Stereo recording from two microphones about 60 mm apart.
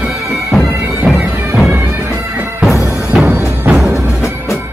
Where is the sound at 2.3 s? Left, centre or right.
Right.